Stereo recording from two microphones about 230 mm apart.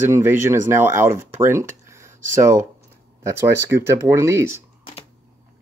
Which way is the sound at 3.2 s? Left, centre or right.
Centre.